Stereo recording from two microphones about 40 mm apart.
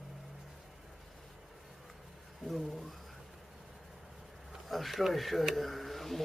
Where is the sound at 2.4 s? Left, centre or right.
Centre.